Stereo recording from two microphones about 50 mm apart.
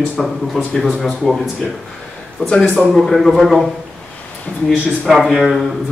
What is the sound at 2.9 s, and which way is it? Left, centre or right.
Speech, centre.